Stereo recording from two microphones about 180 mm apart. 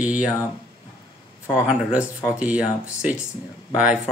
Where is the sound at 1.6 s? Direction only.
5° right (ahead or behind).